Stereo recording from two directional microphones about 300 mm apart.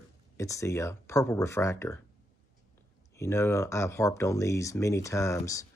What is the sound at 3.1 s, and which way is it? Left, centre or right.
Speech, centre.